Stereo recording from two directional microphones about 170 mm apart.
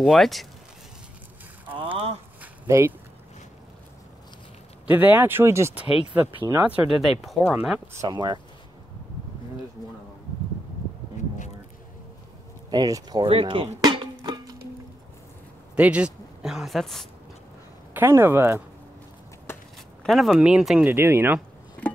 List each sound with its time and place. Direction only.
0.0 s speech: centre (ahead or behind)
1.8 s a sound: 35° right (ahead or behind)
2.4 s a sound: 15° right (ahead or behind)
4.8 s speech: 10° right (ahead or behind)
7.0 s speech: centre (ahead or behind)
7.9 s speech: 20° right (ahead or behind)
12.6 s speech: 25° right (ahead or behind)
13.3 s music: 30° right (ahead or behind)
15.7 s speech: 5° right (ahead or behind)
17.9 s speech: 15° right (ahead or behind)
19.5 s a sound: 15° left (ahead or behind)
20.0 s speech: centre (ahead or behind)